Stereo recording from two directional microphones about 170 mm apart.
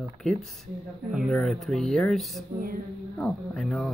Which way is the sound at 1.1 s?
Centre (ahead or behind).